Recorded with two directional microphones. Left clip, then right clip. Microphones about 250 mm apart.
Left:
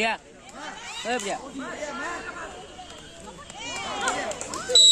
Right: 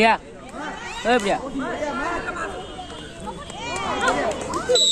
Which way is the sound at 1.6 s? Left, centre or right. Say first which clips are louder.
Right 7 dB; left.